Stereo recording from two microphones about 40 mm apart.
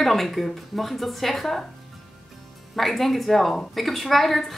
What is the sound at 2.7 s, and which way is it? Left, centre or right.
Speech, centre.